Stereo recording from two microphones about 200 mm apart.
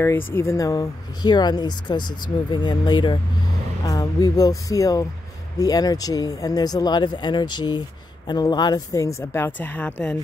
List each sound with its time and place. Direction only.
0.0 s speech: 10° left (ahead or behind)